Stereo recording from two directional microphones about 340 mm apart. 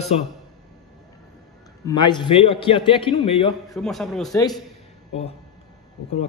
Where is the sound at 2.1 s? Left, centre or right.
Centre.